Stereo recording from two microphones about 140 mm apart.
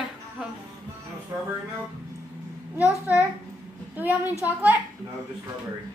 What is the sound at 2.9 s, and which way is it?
Speech, 20° left (ahead or behind).